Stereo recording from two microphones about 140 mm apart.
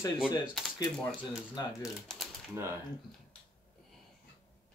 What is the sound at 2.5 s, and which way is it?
Speech, 20° right (ahead or behind).